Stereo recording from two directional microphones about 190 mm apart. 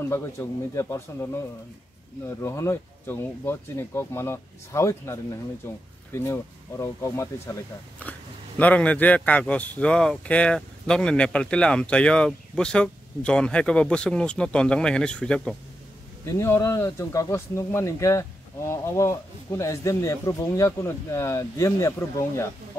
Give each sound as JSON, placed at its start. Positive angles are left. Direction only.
{"t": 0.0, "sound": "speech", "side_deg": 15}
{"t": 16.3, "sound": "speech", "side_deg": 15}